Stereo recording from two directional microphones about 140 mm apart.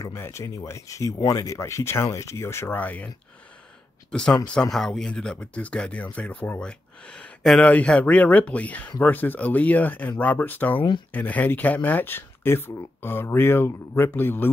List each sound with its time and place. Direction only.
0.0 s speech: 20° left (ahead or behind)
4.1 s speech: 5° left (ahead or behind)